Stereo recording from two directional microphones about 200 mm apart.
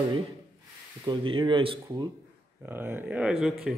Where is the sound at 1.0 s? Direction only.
25° right (ahead or behind).